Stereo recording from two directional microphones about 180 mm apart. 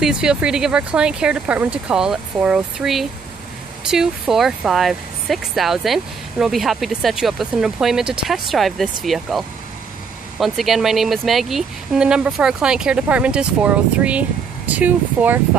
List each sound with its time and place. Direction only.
0.0 s speech: 5° right (ahead or behind)
10.4 s speech: centre (ahead or behind)